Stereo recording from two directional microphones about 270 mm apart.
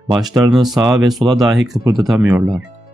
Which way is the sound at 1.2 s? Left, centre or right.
Centre.